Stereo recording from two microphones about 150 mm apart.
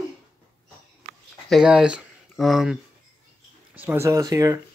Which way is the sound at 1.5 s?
5° right (ahead or behind).